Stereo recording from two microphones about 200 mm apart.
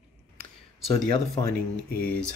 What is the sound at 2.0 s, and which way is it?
Speech, 5° left (ahead or behind).